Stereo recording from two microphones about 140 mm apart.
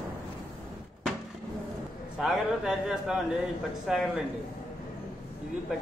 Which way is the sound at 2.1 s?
5° right (ahead or behind).